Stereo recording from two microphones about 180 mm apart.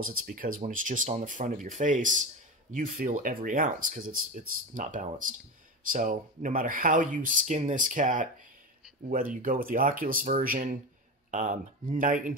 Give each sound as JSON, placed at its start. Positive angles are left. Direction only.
{"t": 0.0, "sound": "speech", "side_deg": -50}